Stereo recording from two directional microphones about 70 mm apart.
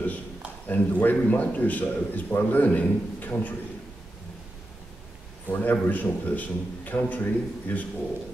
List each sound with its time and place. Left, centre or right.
0.7 s a man's voice: left
5.5 s a man's voice: left